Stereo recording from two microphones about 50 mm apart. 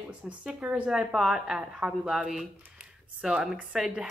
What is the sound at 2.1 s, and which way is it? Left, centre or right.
A woman's voice, centre.